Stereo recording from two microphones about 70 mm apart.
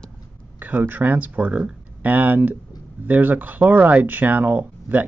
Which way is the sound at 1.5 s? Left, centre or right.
Centre.